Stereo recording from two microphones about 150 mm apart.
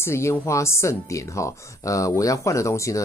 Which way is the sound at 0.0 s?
20° left (ahead or behind).